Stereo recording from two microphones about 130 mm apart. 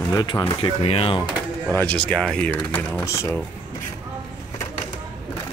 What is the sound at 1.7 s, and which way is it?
Speech, 10° left (ahead or behind).